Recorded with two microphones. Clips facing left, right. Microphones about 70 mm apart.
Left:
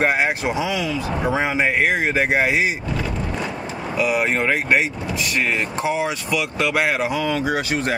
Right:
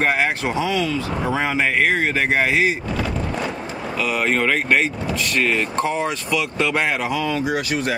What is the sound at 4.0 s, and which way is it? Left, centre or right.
Speech, centre.